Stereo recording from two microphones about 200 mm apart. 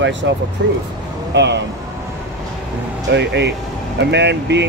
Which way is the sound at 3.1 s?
60° right (ahead or behind).